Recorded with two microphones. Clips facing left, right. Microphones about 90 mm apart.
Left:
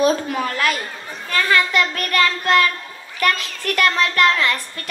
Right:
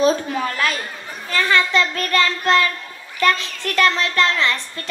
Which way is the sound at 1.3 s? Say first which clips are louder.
Even; 30° right (ahead or behind).